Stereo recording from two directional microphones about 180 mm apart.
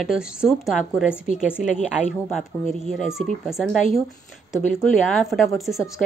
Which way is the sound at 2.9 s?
Centre (ahead or behind).